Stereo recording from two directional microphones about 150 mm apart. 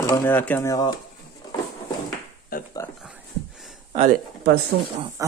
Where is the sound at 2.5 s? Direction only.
75° left (ahead or behind).